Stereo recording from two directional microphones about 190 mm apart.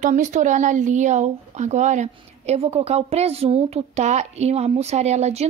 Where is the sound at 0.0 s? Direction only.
40° right (ahead or behind).